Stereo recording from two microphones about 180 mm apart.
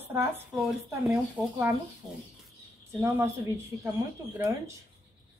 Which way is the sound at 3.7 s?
10° right (ahead or behind).